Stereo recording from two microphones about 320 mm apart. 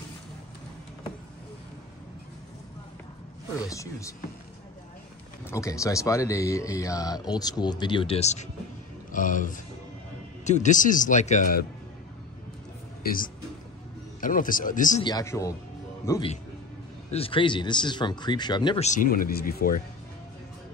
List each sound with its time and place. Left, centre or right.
3.5 s speech: centre
5.5 s speech: centre
13.0 s speech: left
15.0 s speech: centre; by 19.8 s left